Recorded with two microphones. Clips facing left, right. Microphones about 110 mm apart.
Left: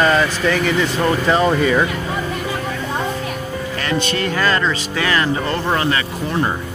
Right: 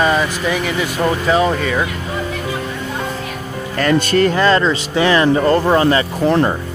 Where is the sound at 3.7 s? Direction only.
45° right (ahead or behind).